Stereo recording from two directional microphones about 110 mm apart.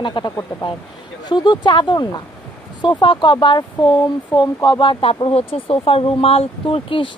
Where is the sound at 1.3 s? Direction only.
45° left (ahead or behind).